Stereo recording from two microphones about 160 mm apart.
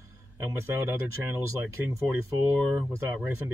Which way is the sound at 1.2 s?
15° right (ahead or behind).